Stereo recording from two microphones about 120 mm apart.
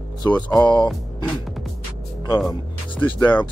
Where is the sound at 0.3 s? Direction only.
10° left (ahead or behind).